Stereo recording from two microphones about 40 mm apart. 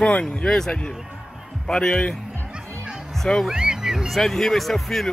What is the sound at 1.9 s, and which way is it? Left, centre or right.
Speech, left.